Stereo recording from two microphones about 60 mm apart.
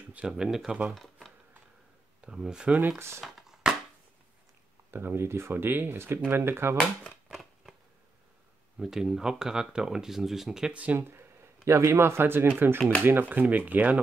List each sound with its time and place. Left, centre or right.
0.0 s a sound: right
0.3 s speech: centre
0.9 s shuffling cards: centre
2.2 s speech: centre
3.3 s chopping: centre
4.9 s speech: right
7.2 s a sound: centre
8.7 s speech: centre
10.7 s speech: right
11.0 s speech: right